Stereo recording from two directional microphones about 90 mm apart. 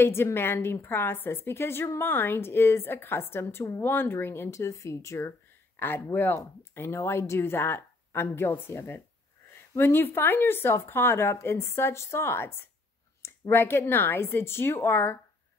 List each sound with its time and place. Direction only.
0.0 s a woman's voice: 25° left (ahead or behind)